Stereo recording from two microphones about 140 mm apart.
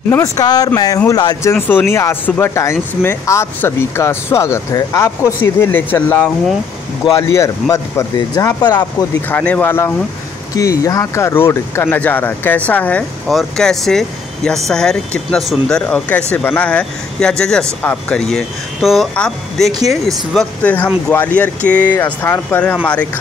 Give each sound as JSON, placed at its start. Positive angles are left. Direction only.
{"t": 0.1, "sound": "speech", "side_deg": 25}
{"t": 9.3, "sound": "speech", "side_deg": 10}